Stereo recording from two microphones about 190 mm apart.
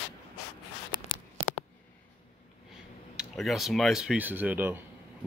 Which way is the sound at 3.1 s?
Centre (ahead or behind).